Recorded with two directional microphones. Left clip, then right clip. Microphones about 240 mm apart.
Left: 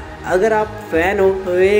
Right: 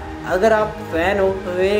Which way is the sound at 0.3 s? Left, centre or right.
Centre.